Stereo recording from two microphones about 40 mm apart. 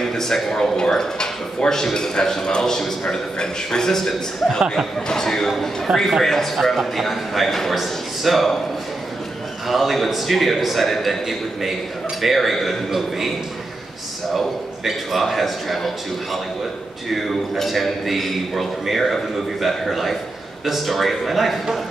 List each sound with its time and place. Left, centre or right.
0.0 s speech: centre
4.1 s a man's voice: centre
5.9 s speech: centre
6.2 s a man's voice: centre
9.7 s a man's voice: centre
14.9 s a man's voice: centre
17.1 s a man's voice: centre